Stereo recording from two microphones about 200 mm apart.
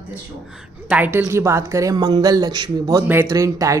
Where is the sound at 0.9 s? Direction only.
10° right (ahead or behind).